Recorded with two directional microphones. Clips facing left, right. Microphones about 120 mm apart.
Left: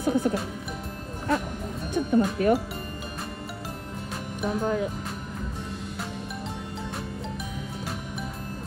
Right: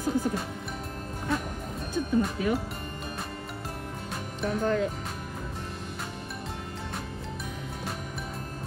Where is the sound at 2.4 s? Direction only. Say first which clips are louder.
Left 6 dB; 50° left (ahead or behind).